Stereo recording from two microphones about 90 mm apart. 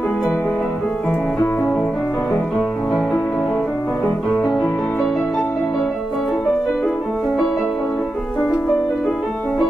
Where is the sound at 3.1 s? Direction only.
5° left (ahead or behind).